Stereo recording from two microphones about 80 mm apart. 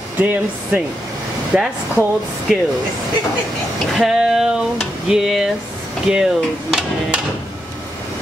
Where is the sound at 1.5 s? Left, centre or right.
Centre.